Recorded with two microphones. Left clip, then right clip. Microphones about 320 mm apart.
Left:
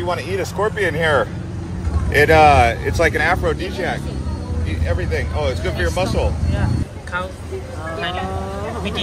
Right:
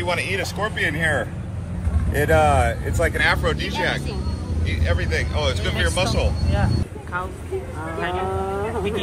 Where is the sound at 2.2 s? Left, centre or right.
Left; by 6.0 s centre.